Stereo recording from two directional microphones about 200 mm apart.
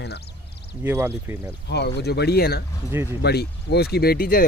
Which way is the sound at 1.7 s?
55° left (ahead or behind).